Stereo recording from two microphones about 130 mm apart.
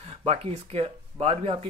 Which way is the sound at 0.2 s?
50° right (ahead or behind).